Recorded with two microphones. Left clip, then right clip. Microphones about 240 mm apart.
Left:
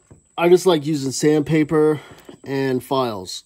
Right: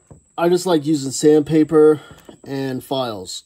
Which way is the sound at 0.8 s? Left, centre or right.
Left.